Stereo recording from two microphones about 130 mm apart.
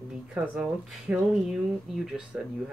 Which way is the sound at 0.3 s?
10° right (ahead or behind).